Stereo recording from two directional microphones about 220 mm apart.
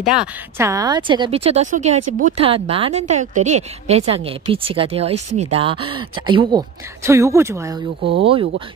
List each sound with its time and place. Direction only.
0.0 s speech: 5° right (ahead or behind)
8.0 s speech: 50° right (ahead or behind)
8.3 s speech: 25° right (ahead or behind)